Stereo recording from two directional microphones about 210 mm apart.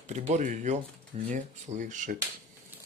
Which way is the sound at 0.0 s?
35° right (ahead or behind).